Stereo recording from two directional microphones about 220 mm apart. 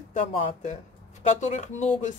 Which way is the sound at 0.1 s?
35° left (ahead or behind).